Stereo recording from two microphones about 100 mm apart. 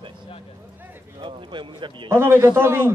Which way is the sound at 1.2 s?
55° right (ahead or behind).